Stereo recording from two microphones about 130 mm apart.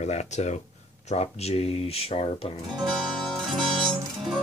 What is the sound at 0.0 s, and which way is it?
Speech, 60° left (ahead or behind).